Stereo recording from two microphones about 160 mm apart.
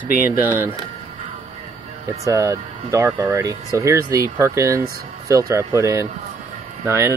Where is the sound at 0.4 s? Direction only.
15° right (ahead or behind).